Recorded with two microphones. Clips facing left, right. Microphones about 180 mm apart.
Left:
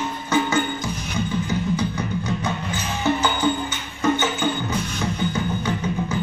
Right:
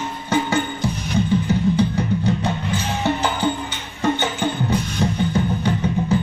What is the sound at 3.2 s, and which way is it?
Music, 35° right (ahead or behind).